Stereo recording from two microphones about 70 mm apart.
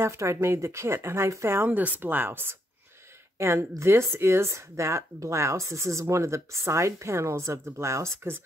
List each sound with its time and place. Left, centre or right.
0.0 s speech: right
3.3 s speech: right